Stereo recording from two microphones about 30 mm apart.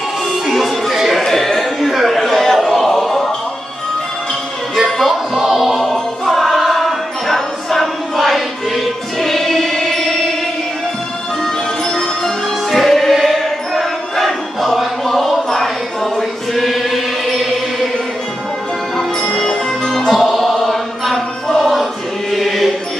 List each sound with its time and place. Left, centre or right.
0.3 s music: centre
1.2 s music: centre
1.8 s a sound: centre
2.2 s music: centre
4.8 s music: centre
5.4 s music: centre
5.7 s choir: centre
11.4 s music: centre
12.7 s choir: centre
20.1 s music: centre
20.7 s a sound: centre
22.3 s chant: centre